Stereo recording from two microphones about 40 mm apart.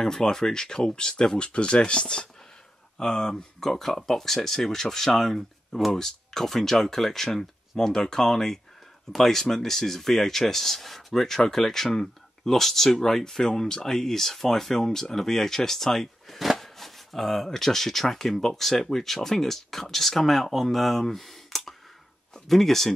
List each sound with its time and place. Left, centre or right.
0.0 s speech: centre